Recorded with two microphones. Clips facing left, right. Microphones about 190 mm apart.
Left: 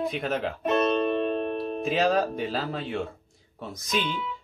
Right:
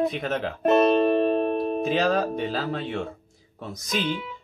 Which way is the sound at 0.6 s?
50° right (ahead or behind).